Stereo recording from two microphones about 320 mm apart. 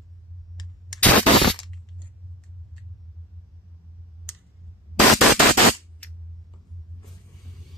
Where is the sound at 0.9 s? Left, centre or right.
Centre.